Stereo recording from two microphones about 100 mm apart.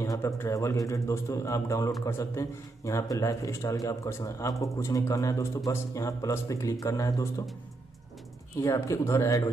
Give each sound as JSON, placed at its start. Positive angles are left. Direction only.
{"t": 0.0, "sound": "speech", "side_deg": 30}
{"t": 8.5, "sound": "speech", "side_deg": 30}